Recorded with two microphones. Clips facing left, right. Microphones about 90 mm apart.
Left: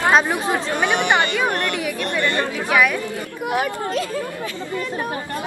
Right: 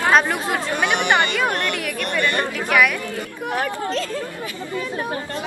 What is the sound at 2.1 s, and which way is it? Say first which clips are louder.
Speech: right 1 dB; 20° left (ahead or behind).